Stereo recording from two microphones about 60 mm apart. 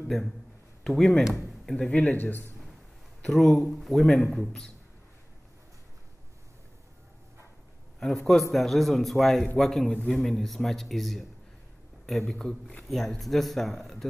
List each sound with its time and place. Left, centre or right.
0.1 s a man's voice: centre
1.8 s a man's voice: centre
2.1 s a man's voice: left
3.3 s a man's voice: centre
8.3 s a man's voice: centre